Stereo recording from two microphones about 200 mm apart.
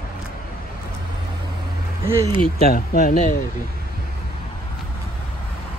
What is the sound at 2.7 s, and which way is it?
Speech, 40° left (ahead or behind).